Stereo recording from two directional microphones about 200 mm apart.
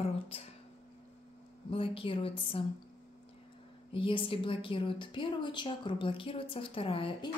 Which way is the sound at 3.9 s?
25° left (ahead or behind).